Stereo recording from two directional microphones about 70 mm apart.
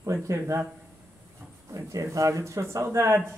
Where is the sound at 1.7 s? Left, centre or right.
Right.